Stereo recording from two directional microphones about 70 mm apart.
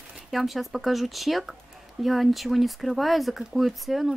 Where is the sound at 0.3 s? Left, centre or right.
Centre.